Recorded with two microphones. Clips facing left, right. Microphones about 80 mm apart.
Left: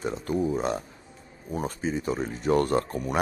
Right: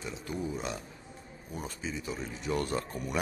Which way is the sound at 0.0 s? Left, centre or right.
Left.